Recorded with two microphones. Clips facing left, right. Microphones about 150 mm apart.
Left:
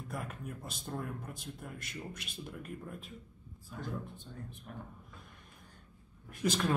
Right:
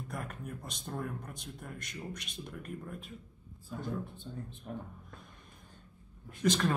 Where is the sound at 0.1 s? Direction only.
Centre (ahead or behind).